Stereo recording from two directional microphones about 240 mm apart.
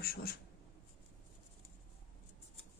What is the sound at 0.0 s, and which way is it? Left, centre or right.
Speech, left.